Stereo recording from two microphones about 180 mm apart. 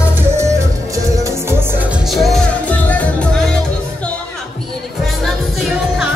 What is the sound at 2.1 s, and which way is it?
Music, centre (ahead or behind).